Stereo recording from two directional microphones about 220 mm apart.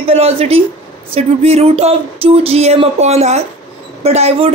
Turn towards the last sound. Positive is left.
turn(degrees=-25)  # may be behind; listen again after turning